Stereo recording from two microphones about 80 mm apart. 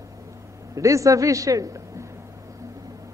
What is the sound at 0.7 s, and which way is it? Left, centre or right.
Speech, right.